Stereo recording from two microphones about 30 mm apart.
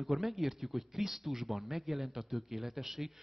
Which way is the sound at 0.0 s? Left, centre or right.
Centre.